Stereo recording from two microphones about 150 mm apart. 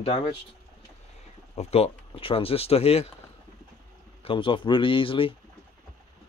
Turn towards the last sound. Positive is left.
turn(degrees=35)  # may be behind; listen again after turning